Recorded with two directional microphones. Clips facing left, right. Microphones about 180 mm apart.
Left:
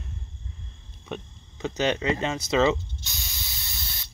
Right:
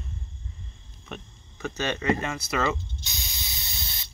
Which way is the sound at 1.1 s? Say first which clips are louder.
Left 5 dB; 20° left (ahead or behind).